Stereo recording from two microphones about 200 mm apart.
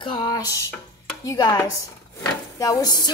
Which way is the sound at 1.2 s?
20° left (ahead or behind).